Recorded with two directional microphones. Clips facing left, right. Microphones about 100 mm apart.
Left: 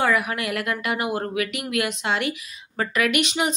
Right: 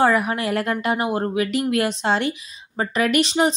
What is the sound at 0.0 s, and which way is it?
Speech, 30° right (ahead or behind).